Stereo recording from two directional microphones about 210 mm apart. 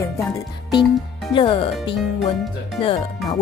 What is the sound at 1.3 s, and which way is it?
Speech, 25° left (ahead or behind).